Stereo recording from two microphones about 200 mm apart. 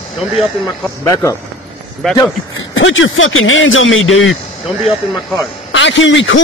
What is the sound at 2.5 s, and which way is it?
Speech, 75° left (ahead or behind).